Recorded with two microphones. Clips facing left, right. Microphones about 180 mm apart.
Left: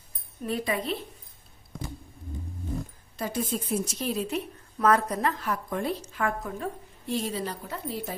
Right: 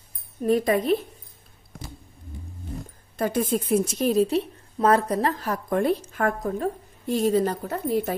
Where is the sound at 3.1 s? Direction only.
55° right (ahead or behind); by 5.7 s 40° right (ahead or behind).